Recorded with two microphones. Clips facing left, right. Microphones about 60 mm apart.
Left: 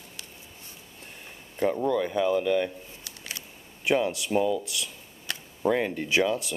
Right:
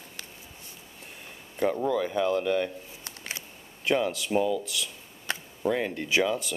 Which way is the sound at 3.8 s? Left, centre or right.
Centre.